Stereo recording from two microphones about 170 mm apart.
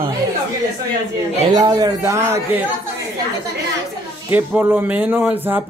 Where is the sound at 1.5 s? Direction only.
25° right (ahead or behind).